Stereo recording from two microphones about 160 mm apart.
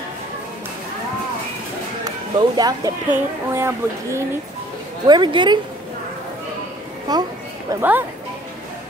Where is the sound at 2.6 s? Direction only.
20° right (ahead or behind).